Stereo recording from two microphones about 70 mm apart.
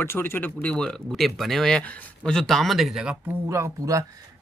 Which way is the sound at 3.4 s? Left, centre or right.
Right.